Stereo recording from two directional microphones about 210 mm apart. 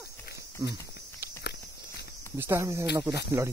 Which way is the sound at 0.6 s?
15° right (ahead or behind).